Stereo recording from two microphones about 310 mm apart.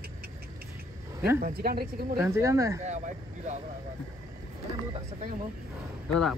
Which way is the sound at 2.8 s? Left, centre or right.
Right.